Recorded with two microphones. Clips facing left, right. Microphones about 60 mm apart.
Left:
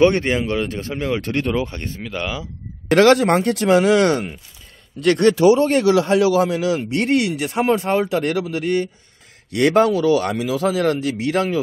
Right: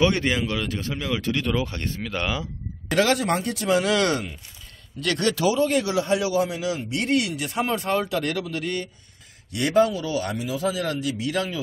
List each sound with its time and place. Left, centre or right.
0.0 s speech: left
1.5 s speech: left
2.9 s speech: left
3.8 s speech: left
5.5 s speech: left
5.9 s speech: left
6.9 s speech: left
9.5 s speech: left